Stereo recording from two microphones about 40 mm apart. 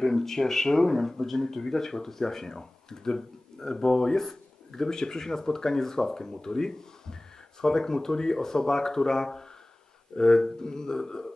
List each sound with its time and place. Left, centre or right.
0.0 s speech: centre